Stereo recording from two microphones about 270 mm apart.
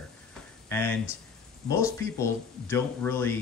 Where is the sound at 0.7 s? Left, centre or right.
Centre.